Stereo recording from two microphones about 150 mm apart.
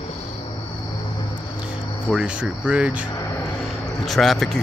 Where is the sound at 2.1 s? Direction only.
5° right (ahead or behind).